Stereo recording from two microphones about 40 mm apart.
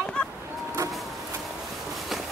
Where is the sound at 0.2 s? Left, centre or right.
Left.